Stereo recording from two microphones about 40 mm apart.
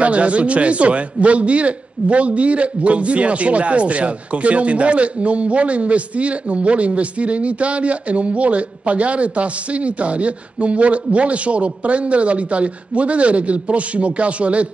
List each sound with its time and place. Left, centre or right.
0.0 s a man's voice: right